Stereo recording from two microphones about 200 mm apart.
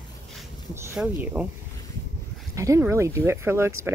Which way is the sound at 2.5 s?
15° right (ahead or behind).